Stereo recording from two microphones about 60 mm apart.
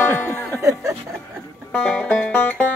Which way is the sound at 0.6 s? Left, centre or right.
Right.